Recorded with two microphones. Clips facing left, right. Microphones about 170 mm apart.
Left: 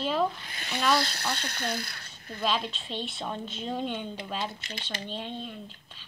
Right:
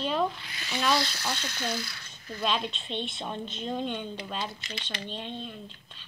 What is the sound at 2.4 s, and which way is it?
A woman's voice, centre (ahead or behind).